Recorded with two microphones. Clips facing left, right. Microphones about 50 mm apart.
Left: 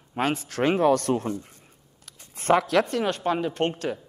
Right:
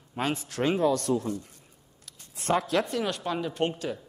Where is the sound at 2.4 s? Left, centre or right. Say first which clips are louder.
Left 5 dB; left.